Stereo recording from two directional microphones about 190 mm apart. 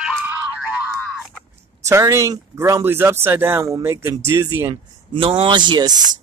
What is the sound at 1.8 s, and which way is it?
Speech, 15° right (ahead or behind).